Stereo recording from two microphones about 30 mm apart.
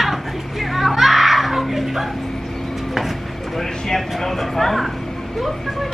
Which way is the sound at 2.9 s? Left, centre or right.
Centre.